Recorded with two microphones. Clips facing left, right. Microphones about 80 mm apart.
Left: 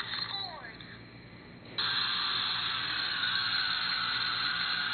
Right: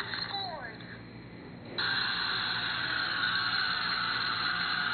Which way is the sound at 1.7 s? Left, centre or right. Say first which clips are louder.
Right 3 dB; centre.